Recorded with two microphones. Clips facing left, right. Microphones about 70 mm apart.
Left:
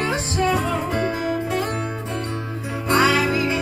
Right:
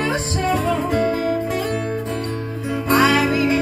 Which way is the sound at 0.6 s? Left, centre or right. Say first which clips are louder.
Right 3 dB; left.